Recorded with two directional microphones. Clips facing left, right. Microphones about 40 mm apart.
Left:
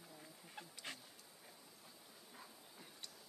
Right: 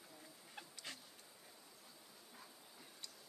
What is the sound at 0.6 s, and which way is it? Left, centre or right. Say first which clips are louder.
Duck: left 1 dB; centre.